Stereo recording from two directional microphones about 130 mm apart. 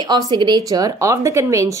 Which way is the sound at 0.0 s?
30° right (ahead or behind).